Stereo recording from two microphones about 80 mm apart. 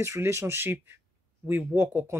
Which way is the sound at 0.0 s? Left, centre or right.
Right.